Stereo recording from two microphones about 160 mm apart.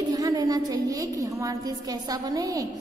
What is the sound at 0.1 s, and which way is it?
A woman's voice, 20° right (ahead or behind).